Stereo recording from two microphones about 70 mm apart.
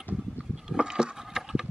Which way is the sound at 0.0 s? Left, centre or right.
Centre.